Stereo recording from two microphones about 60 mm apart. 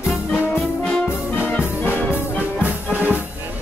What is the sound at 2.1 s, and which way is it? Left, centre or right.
Music, right.